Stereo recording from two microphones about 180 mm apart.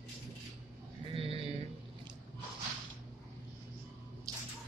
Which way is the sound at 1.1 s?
30° right (ahead or behind).